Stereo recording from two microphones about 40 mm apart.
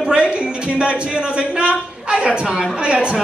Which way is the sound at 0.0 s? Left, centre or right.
Right.